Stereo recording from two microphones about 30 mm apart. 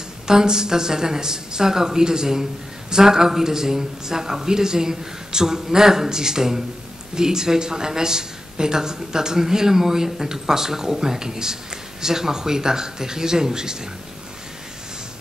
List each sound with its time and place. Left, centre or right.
0.3 s speech: right